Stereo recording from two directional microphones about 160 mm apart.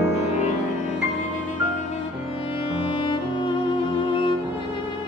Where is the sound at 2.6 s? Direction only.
30° left (ahead or behind).